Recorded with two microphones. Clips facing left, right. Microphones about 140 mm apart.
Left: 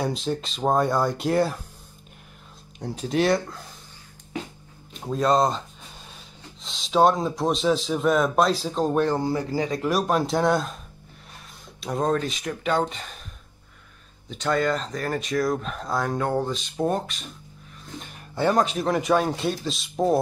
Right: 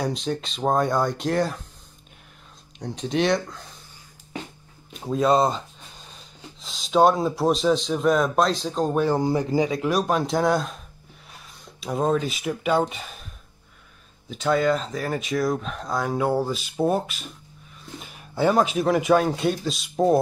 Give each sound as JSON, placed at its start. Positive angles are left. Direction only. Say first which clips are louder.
{"t": 0.0, "sound": "speech", "louder": "even", "side_deg": 0}
{"t": 2.8, "sound": "speech", "louder": "even", "side_deg": 5}
{"t": 5.0, "sound": "speech", "louder": "right 1 dB", "side_deg": 0}
{"t": 9.1, "sound": "speech", "louder": "right 3 dB", "side_deg": -15}
{"t": 9.7, "sound": "speech", "louder": "right 1 dB", "side_deg": 0}
{"t": 11.8, "sound": "speech", "louder": "right 1 dB", "side_deg": -5}
{"t": 14.3, "sound": "speech", "louder": "right 2 dB", "side_deg": 0}